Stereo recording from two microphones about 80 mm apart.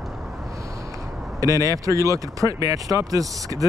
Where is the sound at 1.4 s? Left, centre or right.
Right.